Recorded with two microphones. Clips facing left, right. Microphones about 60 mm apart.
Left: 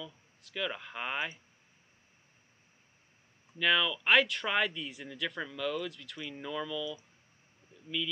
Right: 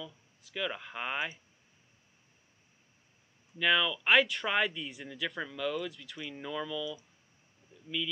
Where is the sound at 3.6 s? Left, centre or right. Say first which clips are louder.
Even; centre.